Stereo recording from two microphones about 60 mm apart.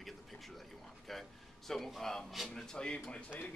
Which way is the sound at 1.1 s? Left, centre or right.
Centre.